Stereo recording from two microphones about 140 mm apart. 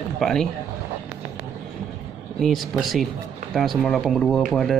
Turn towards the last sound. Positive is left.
turn(degrees=0)  # may be behind; listen again after turning